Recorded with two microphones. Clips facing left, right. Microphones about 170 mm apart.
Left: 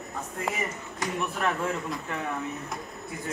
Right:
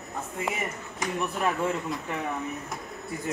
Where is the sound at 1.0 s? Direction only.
Centre (ahead or behind).